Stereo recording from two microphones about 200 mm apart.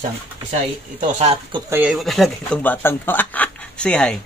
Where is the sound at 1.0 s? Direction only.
30° right (ahead or behind).